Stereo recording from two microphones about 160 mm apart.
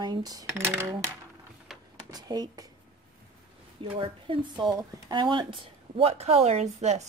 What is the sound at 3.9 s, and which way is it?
Speech, 30° right (ahead or behind).